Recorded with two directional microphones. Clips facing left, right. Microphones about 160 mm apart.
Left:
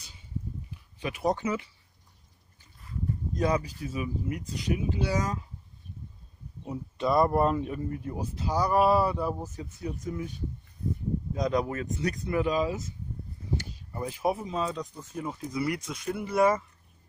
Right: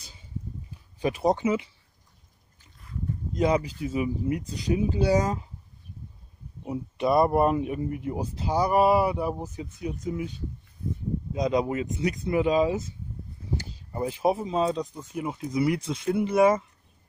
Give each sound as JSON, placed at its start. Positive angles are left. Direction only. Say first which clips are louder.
{"t": 0.9, "sound": "speech", "louder": "right 5 dB", "side_deg": -35}
{"t": 1.3, "sound": "speech", "louder": "right 5 dB", "side_deg": -20}
{"t": 3.3, "sound": "speech", "louder": "right 4 dB", "side_deg": -20}
{"t": 6.6, "sound": "speech", "louder": "right 3 dB", "side_deg": -15}
{"t": 11.3, "sound": "speech", "louder": "right 4 dB", "side_deg": -15}
{"t": 13.9, "sound": "speech", "louder": "right 4 dB", "side_deg": -25}
{"t": 15.0, "sound": "speech", "louder": "right 3 dB", "side_deg": -15}